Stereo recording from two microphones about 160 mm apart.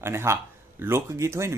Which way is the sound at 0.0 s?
15° right (ahead or behind).